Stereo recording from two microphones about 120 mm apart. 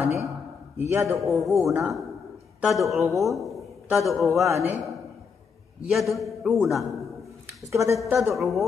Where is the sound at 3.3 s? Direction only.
Centre (ahead or behind).